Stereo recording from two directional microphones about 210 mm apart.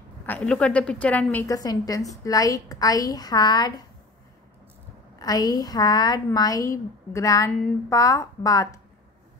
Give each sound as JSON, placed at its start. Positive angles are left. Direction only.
{"t": 0.3, "sound": "a woman's voice", "side_deg": 5}
{"t": 5.2, "sound": "a woman's voice", "side_deg": 15}